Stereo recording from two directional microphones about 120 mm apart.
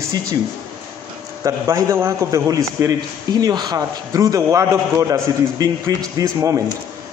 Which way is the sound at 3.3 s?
35° right (ahead or behind).